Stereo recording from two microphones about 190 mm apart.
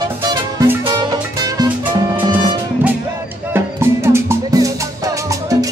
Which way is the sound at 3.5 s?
15° right (ahead or behind).